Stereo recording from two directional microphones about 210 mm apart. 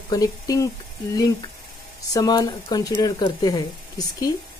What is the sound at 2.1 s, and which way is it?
Speech, 15° left (ahead or behind).